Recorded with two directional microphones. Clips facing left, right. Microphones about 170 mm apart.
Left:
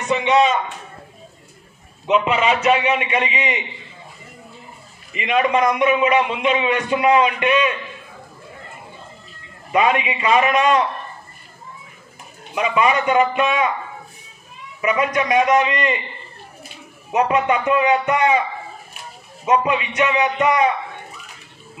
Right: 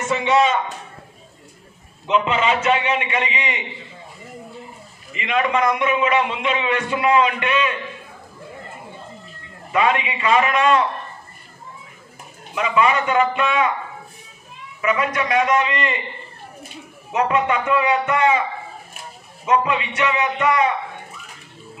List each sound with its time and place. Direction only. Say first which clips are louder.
0.0 s speech: left 1 dB; 20° left (ahead or behind)
2.2 s a man's voice: left 2 dB; 15° left (ahead or behind)
5.1 s a man's voice: left 2 dB; 20° left (ahead or behind)
9.7 s speech: left 2 dB; 20° left (ahead or behind)
12.5 s speech: left 1 dB; 20° left (ahead or behind)
14.8 s a man's voice: left 2 dB; 20° left (ahead or behind)
17.3 s speech: even; 20° left (ahead or behind)
19.4 s a man's voice: left 1 dB; 20° left (ahead or behind)